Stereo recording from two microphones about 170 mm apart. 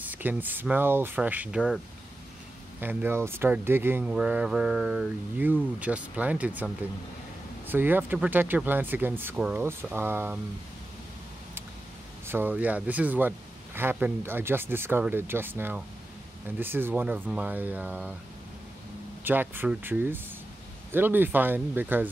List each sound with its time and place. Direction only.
0.1 s speech: 10° right (ahead or behind)
2.8 s speech: 10° right (ahead or behind)
12.3 s speech: 10° right (ahead or behind)
19.2 s speech: 10° right (ahead or behind)